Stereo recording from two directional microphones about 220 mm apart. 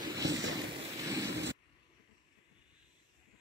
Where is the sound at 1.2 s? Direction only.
50° right (ahead or behind).